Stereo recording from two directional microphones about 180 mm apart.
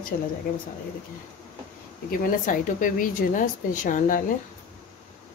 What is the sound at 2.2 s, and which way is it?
Speech, 50° left (ahead or behind).